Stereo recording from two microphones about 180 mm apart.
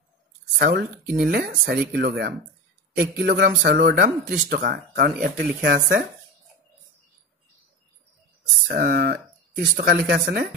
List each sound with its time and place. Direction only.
0.6 s speech: 65° right (ahead or behind)
8.6 s speech: 60° right (ahead or behind)